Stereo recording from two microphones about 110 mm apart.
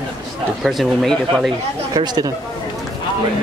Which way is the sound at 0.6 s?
Centre (ahead or behind).